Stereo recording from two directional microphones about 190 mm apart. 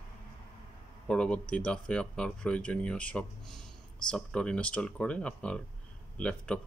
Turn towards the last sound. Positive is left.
turn(degrees=5)  # may be behind; listen again after turning